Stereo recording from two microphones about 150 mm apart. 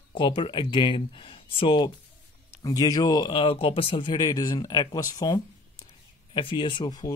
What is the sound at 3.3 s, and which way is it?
Speech, 40° left (ahead or behind).